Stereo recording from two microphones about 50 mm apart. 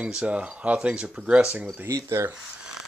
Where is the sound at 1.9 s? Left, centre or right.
Right.